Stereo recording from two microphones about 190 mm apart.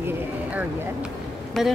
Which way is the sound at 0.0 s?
10° right (ahead or behind).